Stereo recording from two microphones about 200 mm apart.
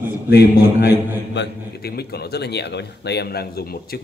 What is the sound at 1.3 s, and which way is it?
A man's voice, 55° left (ahead or behind).